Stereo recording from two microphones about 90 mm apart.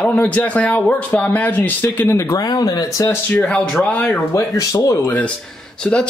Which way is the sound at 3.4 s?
10° left (ahead or behind).